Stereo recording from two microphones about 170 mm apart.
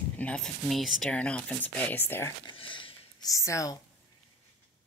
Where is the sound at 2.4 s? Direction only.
30° left (ahead or behind).